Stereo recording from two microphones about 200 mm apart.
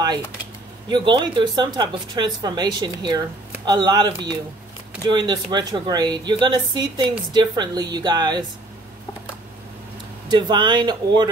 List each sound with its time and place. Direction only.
0.8 s speech: 20° right (ahead or behind)
10.3 s speech: 20° right (ahead or behind)